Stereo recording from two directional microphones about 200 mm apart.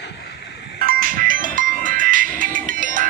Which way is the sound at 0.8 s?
45° right (ahead or behind).